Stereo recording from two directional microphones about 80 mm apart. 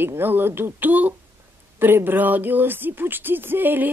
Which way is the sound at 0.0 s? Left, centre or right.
Right.